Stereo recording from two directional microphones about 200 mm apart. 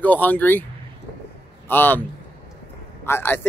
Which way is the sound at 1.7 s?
10° left (ahead or behind).